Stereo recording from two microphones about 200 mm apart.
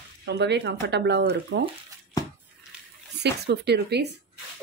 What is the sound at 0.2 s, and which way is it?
Speech, 55° right (ahead or behind).